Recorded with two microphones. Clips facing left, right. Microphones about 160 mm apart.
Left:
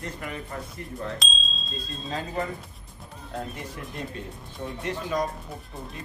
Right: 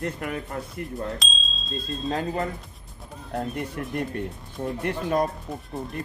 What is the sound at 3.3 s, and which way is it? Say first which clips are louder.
Speech: right 6 dB; 60° right (ahead or behind).